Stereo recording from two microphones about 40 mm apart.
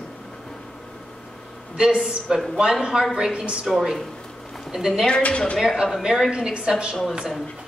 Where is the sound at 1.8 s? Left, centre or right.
Centre.